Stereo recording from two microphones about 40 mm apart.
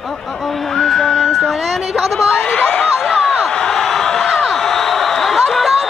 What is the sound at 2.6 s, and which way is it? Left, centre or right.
Speech, left.